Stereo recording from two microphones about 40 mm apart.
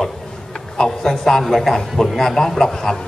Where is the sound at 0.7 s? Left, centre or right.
Centre.